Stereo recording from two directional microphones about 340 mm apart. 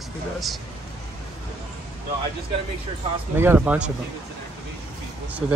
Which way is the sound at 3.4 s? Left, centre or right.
Centre.